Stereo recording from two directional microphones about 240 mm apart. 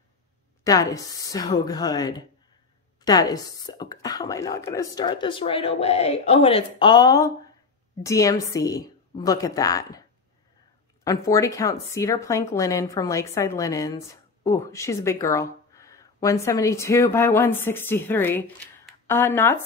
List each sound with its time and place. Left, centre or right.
0.7 s speech: centre
11.1 s speech: centre